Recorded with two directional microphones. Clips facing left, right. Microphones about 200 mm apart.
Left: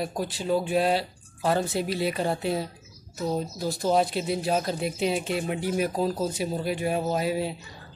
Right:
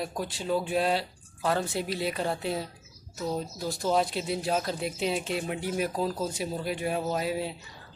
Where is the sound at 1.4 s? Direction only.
30° left (ahead or behind).